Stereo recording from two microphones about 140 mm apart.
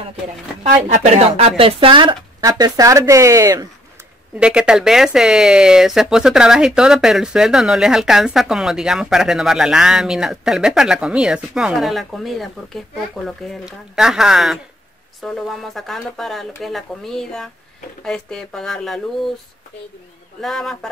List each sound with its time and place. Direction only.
0.9 s speech: 50° right (ahead or behind); by 2.1 s 35° right (ahead or behind)
2.4 s speech: 25° right (ahead or behind)
4.4 s speech: 5° right (ahead or behind)
20.3 s speech: centre (ahead or behind)